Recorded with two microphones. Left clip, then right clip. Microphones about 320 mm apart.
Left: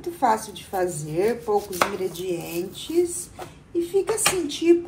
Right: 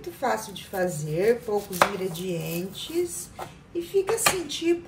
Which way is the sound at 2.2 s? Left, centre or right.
Centre.